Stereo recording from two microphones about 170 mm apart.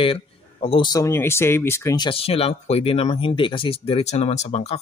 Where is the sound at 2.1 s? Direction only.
35° left (ahead or behind).